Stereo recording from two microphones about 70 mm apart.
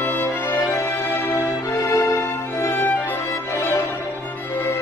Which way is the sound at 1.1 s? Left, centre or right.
Left.